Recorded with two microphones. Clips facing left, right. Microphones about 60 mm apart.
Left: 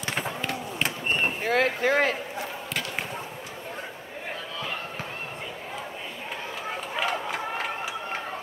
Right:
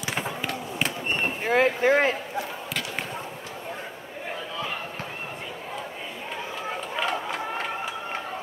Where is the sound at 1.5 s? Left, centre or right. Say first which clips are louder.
Right 4 dB; right.